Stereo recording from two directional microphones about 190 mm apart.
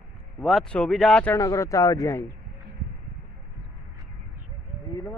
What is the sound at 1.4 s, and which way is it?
Speech, 15° left (ahead or behind).